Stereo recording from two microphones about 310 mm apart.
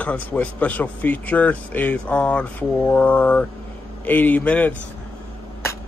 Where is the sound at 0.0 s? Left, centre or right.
Centre.